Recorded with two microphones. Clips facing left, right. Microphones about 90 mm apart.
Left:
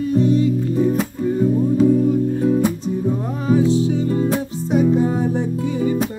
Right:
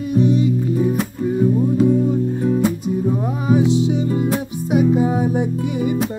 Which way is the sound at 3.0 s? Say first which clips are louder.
Right 1 dB; 10° right (ahead or behind).